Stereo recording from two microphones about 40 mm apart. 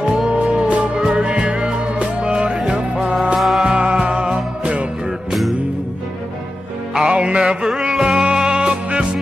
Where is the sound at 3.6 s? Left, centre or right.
Right.